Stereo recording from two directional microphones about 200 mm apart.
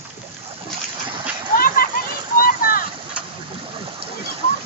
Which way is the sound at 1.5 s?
45° left (ahead or behind).